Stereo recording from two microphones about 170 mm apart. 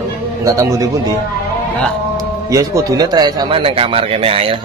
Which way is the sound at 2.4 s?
20° right (ahead or behind).